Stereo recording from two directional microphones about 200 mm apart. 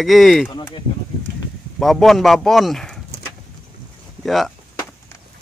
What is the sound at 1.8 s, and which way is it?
Speech, centre (ahead or behind).